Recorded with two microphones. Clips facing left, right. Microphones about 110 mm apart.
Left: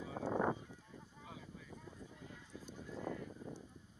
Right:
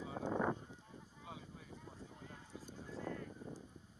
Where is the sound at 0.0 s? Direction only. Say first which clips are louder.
Left 1 dB; 30° right (ahead or behind).